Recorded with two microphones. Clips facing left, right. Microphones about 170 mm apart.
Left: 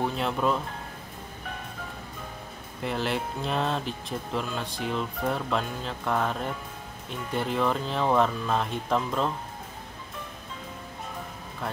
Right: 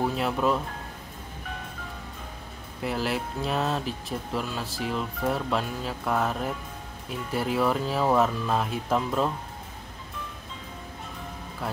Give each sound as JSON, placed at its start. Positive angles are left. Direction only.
{"t": 0.0, "sound": "speech", "side_deg": -5}
{"t": 2.8, "sound": "speech", "side_deg": -5}